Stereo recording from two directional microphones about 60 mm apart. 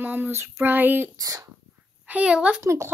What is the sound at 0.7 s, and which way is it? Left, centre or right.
Child singing, right.